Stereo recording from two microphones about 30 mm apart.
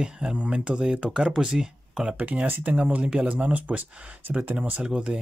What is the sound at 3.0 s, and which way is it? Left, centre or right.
Speech, right.